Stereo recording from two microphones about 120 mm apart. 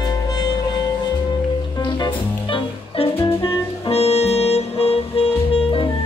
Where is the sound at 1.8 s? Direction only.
40° left (ahead or behind).